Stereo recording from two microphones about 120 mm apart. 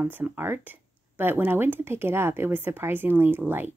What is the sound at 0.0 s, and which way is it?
Speech, 15° right (ahead or behind).